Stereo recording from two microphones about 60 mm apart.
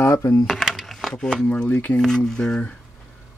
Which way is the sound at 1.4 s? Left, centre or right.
Left.